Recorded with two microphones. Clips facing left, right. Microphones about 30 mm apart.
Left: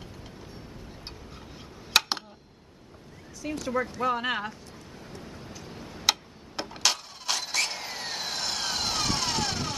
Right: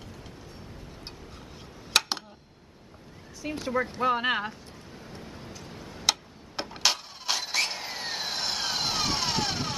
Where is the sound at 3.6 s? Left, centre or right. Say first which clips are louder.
Right 1 dB; centre.